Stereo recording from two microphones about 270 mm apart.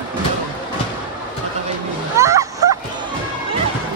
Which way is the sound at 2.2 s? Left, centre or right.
Centre.